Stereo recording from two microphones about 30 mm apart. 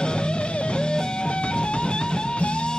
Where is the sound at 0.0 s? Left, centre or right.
Left.